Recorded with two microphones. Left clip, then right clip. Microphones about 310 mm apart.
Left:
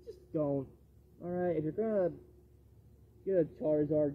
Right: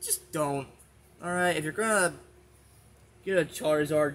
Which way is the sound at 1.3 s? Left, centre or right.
Centre.